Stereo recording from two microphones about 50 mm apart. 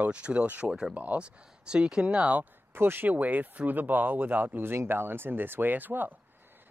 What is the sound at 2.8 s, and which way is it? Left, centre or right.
Speech, right.